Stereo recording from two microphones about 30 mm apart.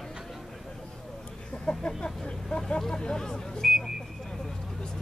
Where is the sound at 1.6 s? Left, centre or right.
Left.